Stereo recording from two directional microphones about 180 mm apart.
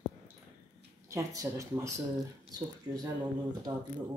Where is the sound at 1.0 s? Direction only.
15° right (ahead or behind).